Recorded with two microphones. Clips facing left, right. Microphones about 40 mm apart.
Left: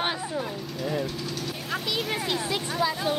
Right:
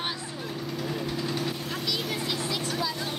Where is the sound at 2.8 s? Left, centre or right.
Centre.